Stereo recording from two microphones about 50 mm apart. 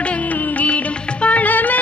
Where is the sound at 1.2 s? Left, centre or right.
Left.